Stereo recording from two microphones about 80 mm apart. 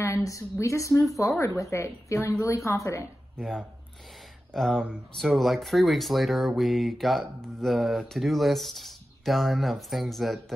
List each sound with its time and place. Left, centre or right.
0.0 s speech: left
3.3 s speech: centre